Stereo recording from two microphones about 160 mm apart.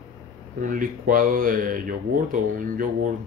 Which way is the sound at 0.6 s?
55° right (ahead or behind).